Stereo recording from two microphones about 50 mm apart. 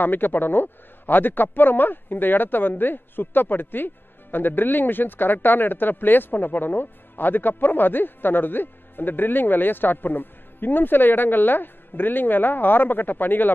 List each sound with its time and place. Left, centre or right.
0.0 s a man's voice: left